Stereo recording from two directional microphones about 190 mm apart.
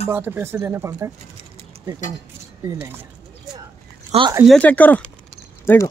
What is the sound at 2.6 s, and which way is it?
Speech, 15° right (ahead or behind).